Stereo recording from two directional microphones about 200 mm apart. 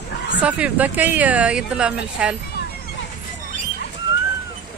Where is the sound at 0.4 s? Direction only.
5° right (ahead or behind).